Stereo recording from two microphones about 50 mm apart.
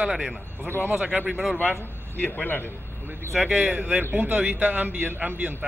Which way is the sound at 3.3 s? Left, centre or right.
Centre.